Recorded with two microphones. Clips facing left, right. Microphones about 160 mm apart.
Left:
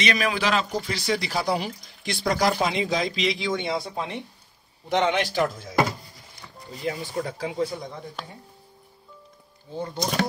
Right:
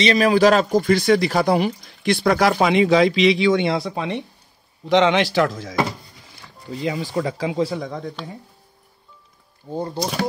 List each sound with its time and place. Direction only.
0.0 s speech: 35° right (ahead or behind); by 4.1 s 80° right
4.8 s speech: 90° right
6.8 s speech: 90° right
9.7 s speech: 40° right (ahead or behind)